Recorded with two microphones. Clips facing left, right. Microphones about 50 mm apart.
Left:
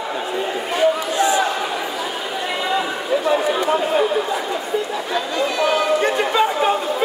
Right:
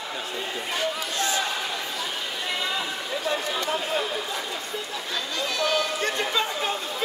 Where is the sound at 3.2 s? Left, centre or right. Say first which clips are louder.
Left 8 dB; centre.